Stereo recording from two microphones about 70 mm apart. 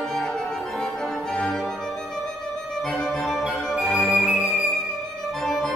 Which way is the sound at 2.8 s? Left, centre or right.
Centre.